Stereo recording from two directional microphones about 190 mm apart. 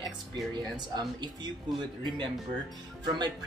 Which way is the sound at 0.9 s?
20° right (ahead or behind).